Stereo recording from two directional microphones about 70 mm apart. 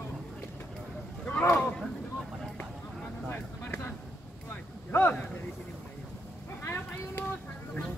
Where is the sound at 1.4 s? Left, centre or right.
Left.